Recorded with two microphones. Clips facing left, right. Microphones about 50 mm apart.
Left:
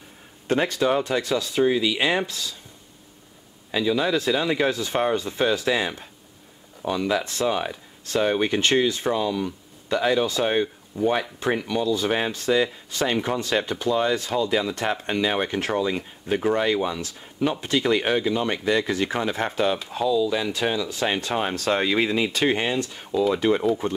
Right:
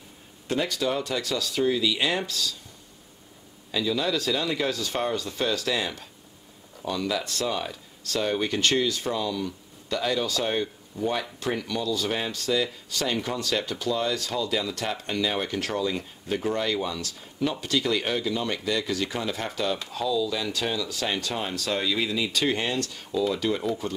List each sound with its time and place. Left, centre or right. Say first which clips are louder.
0.5 s speech: left 5 dB; left
3.7 s speech: left 4 dB; left